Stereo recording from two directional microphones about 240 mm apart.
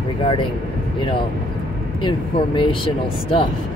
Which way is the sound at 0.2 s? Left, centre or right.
Left.